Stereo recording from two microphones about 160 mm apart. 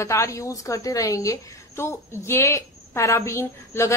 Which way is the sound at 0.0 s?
20° left (ahead or behind).